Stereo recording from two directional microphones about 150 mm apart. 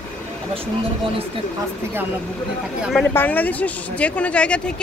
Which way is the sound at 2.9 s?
10° left (ahead or behind).